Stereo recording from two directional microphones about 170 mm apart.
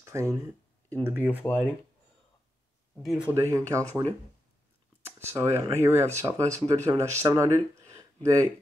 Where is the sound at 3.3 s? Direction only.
15° right (ahead or behind).